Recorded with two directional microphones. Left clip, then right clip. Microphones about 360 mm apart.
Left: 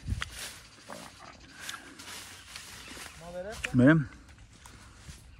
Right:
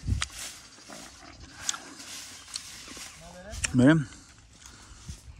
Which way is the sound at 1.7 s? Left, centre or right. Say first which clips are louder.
Right 8 dB; centre.